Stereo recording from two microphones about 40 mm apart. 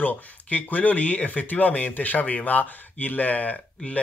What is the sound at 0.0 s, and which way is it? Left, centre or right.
Speech, left.